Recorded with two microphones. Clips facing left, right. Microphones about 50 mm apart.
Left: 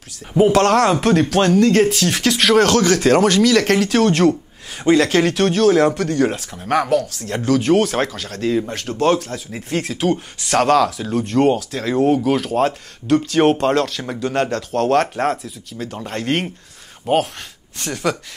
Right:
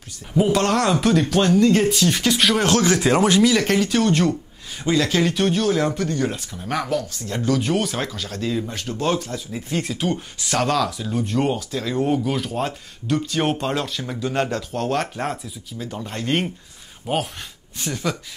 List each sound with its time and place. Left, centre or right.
0.5 s speech: left
2.9 s speech: centre
3.5 s speech: left
6.5 s speech: left
10.5 s speech: left
10.9 s speech: left
17.7 s speech: left